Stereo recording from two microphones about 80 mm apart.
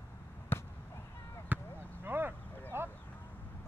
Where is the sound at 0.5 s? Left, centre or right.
Left.